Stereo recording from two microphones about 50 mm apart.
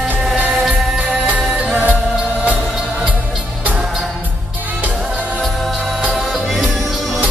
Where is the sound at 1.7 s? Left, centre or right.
Right.